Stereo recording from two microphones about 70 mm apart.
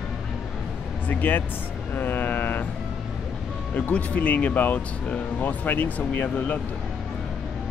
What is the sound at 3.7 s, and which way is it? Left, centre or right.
Speech, left.